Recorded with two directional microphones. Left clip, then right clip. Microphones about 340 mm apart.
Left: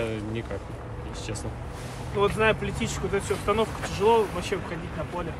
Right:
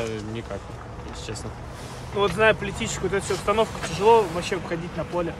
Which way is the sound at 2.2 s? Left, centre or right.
Right.